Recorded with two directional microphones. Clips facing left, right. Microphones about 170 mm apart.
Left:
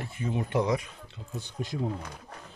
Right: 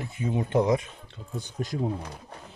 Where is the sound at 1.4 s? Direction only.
45° right (ahead or behind).